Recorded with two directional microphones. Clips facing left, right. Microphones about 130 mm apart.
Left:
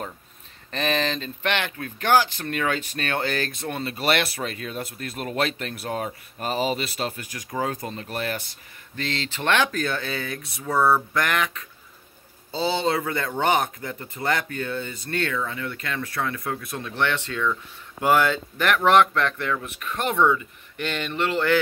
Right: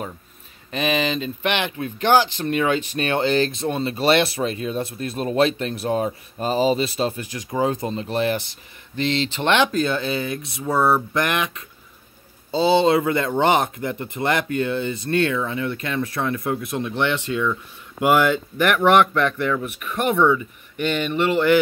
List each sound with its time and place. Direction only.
0.7 s speech: 10° right (ahead or behind)